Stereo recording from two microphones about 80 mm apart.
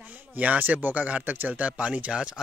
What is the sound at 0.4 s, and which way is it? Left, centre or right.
Speech, right.